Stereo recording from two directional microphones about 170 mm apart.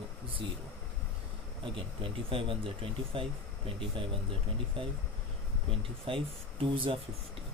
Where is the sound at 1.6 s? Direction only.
30° right (ahead or behind).